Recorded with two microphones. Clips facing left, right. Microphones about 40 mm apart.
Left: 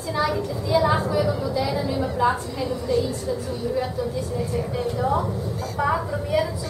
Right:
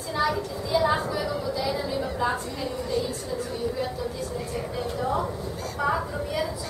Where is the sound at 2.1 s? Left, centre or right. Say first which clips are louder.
Left 5 dB; centre.